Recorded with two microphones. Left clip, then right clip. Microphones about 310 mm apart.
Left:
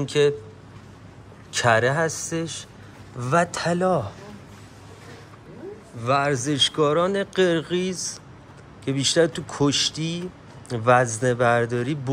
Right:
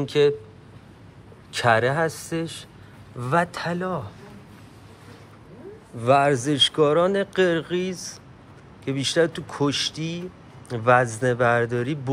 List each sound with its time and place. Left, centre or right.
0.0 s speech: centre
1.5 s speech: centre
5.9 s speech: centre